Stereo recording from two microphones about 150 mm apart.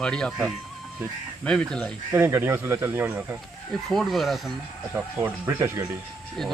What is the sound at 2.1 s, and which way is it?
Speech, 15° right (ahead or behind).